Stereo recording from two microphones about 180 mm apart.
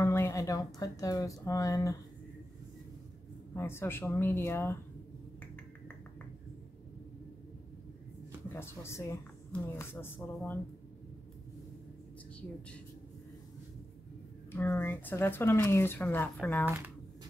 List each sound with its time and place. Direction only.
0.0 s a sound: 15° left (ahead or behind)
0.7 s speech: 20° left (ahead or behind)
3.5 s speech: 15° left (ahead or behind)
8.5 s speech: 15° left (ahead or behind)
14.5 s speech: 10° left (ahead or behind)